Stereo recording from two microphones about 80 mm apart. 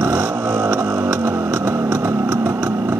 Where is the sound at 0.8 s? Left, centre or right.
Right.